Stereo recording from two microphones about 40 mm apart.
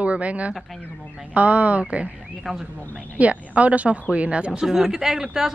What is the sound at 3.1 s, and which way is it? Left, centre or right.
A woman's voice, right.